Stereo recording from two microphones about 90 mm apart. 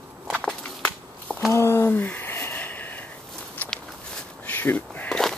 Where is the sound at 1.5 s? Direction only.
30° left (ahead or behind).